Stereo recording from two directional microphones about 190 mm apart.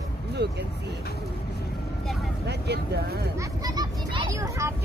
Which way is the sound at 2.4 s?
60° right (ahead or behind).